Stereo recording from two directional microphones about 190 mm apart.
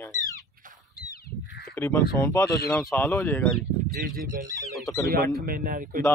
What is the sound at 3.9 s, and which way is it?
A man's voice, 50° right (ahead or behind).